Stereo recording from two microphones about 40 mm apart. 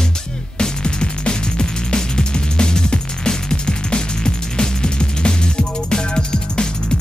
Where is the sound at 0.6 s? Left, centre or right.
Left.